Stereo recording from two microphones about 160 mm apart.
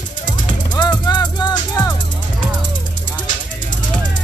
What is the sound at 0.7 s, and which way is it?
Music, 25° left (ahead or behind).